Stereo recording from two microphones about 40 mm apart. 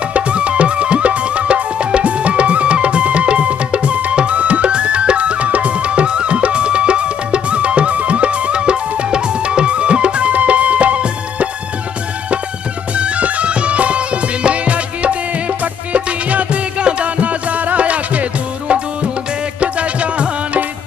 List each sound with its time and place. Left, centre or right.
0.1 s music: right
12.9 s music: right
19.6 s music: right